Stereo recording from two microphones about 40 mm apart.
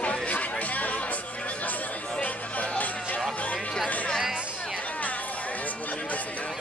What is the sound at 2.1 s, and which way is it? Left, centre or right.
Music, left.